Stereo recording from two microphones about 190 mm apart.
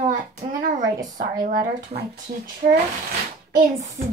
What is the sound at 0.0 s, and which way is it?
Hands, 45° right (ahead or behind).